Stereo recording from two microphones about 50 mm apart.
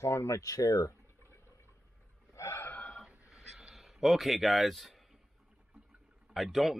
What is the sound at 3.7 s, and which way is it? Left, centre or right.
Speech, centre.